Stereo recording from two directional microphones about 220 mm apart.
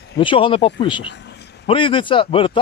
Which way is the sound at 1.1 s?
50° left (ahead or behind).